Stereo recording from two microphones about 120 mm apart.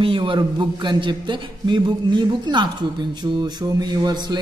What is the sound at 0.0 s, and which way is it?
A man's voice, 45° right (ahead or behind).